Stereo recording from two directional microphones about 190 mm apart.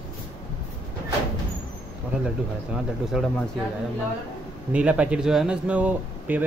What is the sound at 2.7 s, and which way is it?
Speech, centre (ahead or behind).